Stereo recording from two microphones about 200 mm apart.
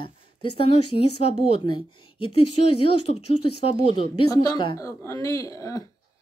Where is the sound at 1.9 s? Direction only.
90° left.